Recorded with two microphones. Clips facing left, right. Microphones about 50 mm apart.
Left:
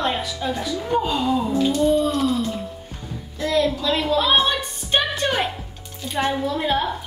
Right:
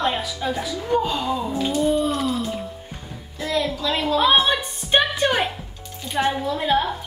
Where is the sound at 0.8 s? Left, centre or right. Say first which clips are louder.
Even; centre.